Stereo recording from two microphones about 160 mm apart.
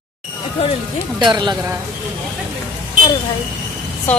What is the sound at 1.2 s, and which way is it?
Speech, 30° right (ahead or behind).